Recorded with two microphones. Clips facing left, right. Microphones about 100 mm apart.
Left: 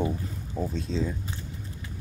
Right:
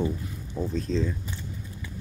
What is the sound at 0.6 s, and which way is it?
Speech, centre (ahead or behind).